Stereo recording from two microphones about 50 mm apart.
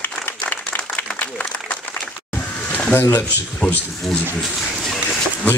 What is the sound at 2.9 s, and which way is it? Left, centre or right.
Speech, left.